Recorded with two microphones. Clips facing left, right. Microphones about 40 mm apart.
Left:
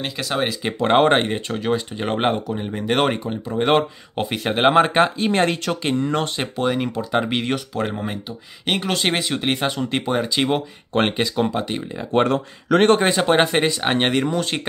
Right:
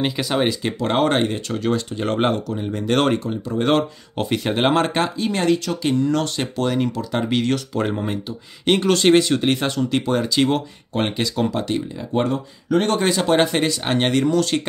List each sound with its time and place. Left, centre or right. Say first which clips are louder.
0.0 s speech: right 3 dB; centre
0.7 s speech: left 3 dB; left
4.2 s speech: left 1 dB; centre
5.2 s speech: even; left
6.4 s speech: right 1 dB; centre
7.7 s speech: right 2 dB; centre
11.0 s speech: left 3 dB; left
11.3 s speech: even; centre
12.1 s speech: left 3 dB; left
12.9 s speech: left 1 dB; left